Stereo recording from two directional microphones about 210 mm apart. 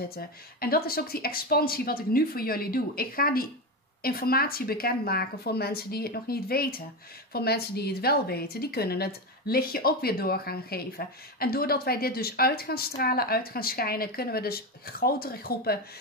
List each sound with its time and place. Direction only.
0.1 s a woman's voice: 45° left (ahead or behind)